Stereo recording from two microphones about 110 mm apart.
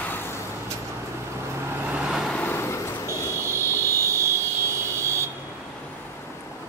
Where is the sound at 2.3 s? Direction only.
20° left (ahead or behind).